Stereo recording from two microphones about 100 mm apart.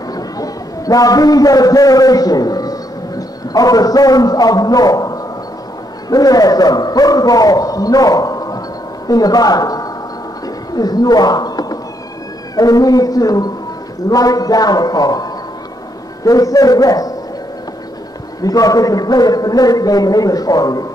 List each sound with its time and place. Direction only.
0.1 s a man's voice: 40° left (ahead or behind)
18.4 s a man's voice: 35° left (ahead or behind)